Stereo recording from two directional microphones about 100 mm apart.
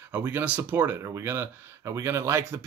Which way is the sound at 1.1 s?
25° right (ahead or behind).